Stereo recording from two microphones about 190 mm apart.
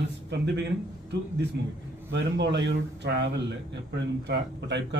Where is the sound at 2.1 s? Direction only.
65° right (ahead or behind).